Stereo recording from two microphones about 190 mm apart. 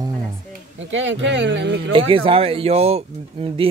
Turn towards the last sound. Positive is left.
turn(degrees=-30)  # may be behind; listen again after turning